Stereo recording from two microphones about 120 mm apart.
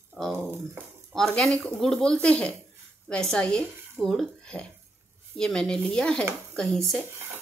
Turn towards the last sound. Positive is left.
turn(degrees=0)  # may be behind; listen again after turning